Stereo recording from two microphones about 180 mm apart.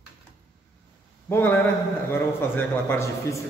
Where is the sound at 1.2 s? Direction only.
10° left (ahead or behind).